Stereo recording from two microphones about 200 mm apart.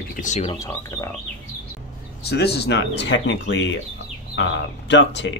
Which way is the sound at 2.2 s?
55° left (ahead or behind).